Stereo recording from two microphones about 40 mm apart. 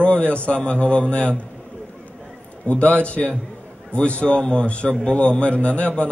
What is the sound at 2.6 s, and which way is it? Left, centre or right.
A man's voice, left.